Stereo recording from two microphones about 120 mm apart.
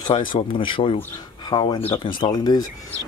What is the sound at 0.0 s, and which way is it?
Speech, 45° left (ahead or behind).